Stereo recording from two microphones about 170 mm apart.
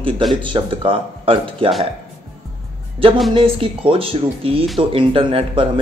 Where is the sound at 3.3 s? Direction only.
30° right (ahead or behind).